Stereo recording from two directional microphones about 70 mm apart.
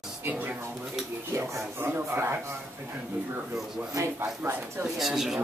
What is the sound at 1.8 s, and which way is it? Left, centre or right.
Speech, right.